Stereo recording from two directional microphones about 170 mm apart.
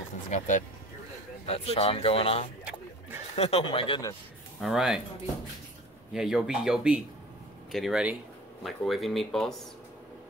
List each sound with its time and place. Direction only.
0.3 s speech: 45° left (ahead or behind)
4.6 s speech: centre (ahead or behind)
6.1 s speech: 5° right (ahead or behind)